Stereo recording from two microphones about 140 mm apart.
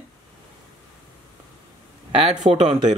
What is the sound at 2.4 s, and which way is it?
Speech, 45° right (ahead or behind).